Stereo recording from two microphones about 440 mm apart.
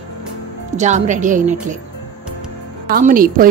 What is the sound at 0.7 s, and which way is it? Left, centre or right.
A woman's voice, centre.